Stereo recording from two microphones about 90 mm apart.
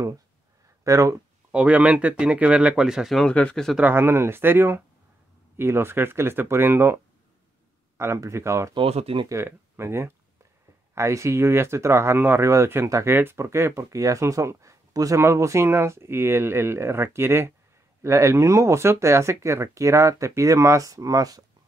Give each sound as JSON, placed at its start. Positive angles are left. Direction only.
{"t": 0.8, "sound": "speech", "side_deg": -35}
{"t": 1.5, "sound": "speech", "side_deg": -15}
{"t": 3.2, "sound": "speech", "side_deg": 10}
{"t": 3.8, "sound": "speech", "side_deg": -25}
{"t": 8.0, "sound": "speech", "side_deg": -30}
{"t": 8.7, "sound": "speech", "side_deg": -80}
{"t": 9.3, "sound": "speech", "side_deg": -30}